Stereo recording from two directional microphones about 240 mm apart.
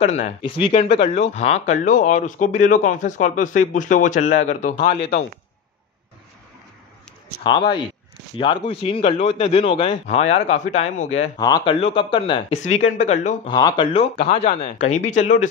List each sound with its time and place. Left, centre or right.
0.0 s a man's voice: left
7.4 s a man's voice: centre
11.3 s a man's voice: centre
13.5 s a man's voice: centre